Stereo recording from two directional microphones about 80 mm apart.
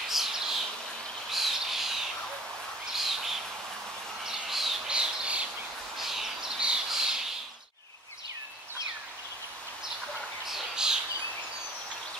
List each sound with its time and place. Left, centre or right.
0.1 s a sound: centre
1.3 s bird: centre
5.9 s squawk: centre
10.4 s bird: centre